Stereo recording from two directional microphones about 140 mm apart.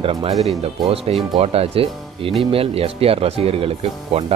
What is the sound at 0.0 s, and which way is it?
Speech, 40° right (ahead or behind).